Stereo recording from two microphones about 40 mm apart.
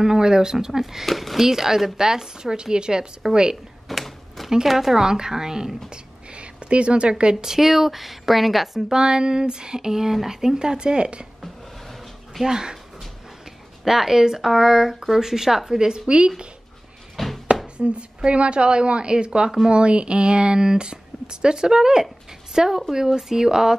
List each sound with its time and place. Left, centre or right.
0.0 s speech: centre
1.0 s speech: centre; by 3.1 s right
3.9 s a sound: centre
4.6 s speech: centre
5.9 s a sound: right
7.4 s speech: centre
8.9 s speech: right
11.4 s a sound: centre
12.4 s speech: centre
13.8 s speech: centre
17.2 s a sound: centre
17.7 s a woman's voice: right